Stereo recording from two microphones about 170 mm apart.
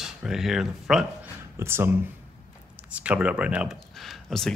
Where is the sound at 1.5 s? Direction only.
15° right (ahead or behind).